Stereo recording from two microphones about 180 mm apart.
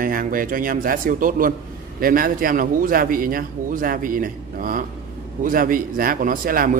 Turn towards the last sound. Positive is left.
turn(degrees=-50)  # may be behind; listen again after turning